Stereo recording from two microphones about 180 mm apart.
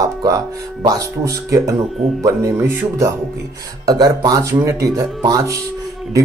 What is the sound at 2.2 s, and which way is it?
Speech, 15° right (ahead or behind).